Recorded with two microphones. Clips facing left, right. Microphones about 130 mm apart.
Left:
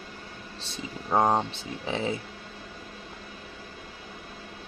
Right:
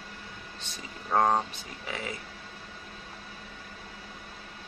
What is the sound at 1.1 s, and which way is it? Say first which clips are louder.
Speech: left 2 dB; 20° left (ahead or behind).